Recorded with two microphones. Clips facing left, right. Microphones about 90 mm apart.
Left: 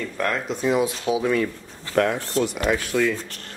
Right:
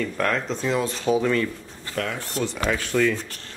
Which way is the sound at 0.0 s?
5° left (ahead or behind).